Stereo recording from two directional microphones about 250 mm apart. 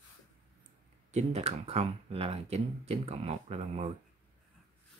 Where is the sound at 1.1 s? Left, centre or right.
Right.